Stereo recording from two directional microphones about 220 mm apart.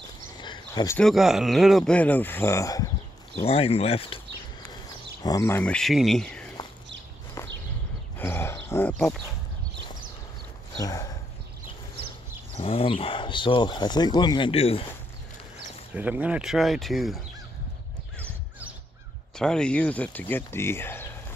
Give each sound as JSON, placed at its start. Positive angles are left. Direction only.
{"t": 0.4, "sound": "a sound", "side_deg": 20}
{"t": 0.9, "sound": "speech", "side_deg": 0}
{"t": 3.4, "sound": "speech", "side_deg": 25}
{"t": 5.2, "sound": "speech", "side_deg": 15}
{"t": 7.4, "sound": "a sound", "side_deg": 15}
{"t": 10.8, "sound": "speech", "side_deg": 15}
{"t": 12.5, "sound": "speech", "side_deg": 25}
{"t": 15.9, "sound": "speech", "side_deg": -5}
{"t": 19.3, "sound": "speech", "side_deg": 5}